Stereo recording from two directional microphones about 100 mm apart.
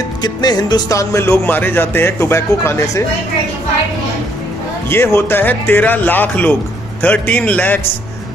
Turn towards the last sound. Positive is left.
turn(degrees=15)  # may be behind; listen again after turning